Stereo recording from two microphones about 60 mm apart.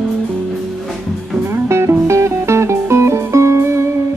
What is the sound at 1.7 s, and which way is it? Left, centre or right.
Music, right.